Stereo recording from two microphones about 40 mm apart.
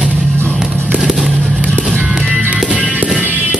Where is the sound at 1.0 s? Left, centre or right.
Centre.